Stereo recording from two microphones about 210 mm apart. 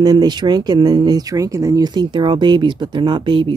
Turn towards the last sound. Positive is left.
turn(degrees=-20)  # may be behind; listen again after turning